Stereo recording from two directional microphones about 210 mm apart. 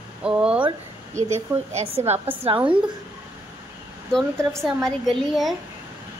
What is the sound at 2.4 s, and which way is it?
Speech, 25° right (ahead or behind).